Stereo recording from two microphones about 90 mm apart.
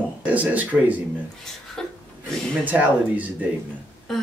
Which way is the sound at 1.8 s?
5° left (ahead or behind).